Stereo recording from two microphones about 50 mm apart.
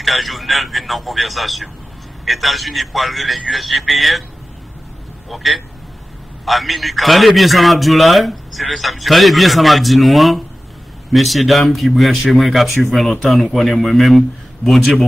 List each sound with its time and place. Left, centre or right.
0.0 s a man's voice: centre
5.3 s a man's voice: centre